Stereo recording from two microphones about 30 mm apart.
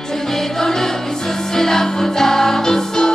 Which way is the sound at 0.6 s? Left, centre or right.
Centre.